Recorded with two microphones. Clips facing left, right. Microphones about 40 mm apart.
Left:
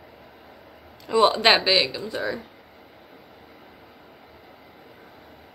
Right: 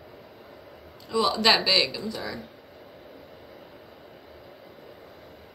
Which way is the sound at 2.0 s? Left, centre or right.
Left.